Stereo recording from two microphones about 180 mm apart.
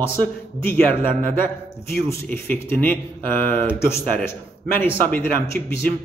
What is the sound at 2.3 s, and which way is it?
A man's voice, 10° left (ahead or behind).